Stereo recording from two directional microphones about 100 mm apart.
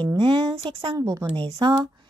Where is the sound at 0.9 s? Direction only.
35° right (ahead or behind).